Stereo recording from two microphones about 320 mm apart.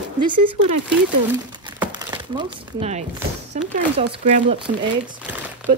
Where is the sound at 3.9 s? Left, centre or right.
Right.